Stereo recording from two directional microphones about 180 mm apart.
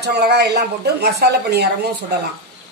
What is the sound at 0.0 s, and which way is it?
A woman's voice, 65° right (ahead or behind).